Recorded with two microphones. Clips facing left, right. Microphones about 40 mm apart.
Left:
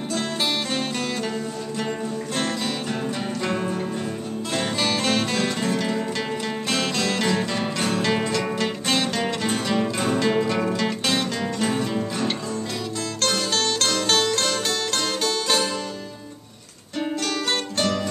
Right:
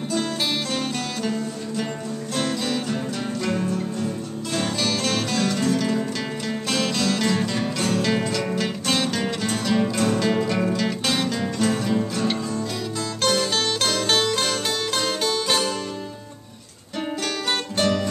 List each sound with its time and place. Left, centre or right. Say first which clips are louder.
2.3 s music: right 3 dB; centre
3.4 s music: right 1 dB; left
4.6 s music: even; centre
17.7 s music: right 4 dB; centre